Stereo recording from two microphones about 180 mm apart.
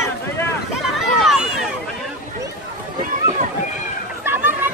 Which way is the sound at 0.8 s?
Centre (ahead or behind).